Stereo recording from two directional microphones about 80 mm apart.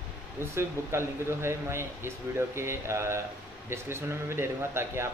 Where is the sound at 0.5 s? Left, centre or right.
Right.